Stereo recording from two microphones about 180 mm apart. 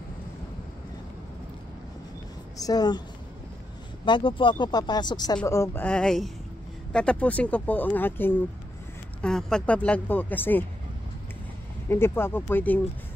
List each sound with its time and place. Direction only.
2.5 s speech: 20° left (ahead or behind)
4.0 s speech: 25° left (ahead or behind); by 10.6 s 10° left (ahead or behind)
11.9 s speech: 10° left (ahead or behind)